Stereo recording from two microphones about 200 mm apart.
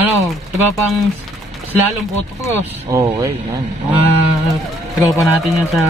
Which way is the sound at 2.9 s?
15° right (ahead or behind).